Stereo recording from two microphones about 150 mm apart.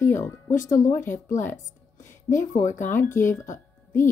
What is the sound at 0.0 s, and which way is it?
Speech, 20° left (ahead or behind).